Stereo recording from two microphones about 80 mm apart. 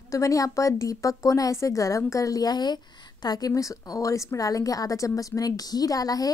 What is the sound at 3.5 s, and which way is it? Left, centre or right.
Speech, left.